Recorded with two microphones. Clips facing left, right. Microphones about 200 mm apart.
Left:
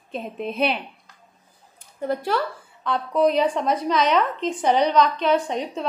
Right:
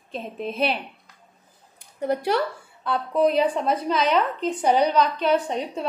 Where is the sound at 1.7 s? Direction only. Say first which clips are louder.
Right 1 dB; 15° right (ahead or behind).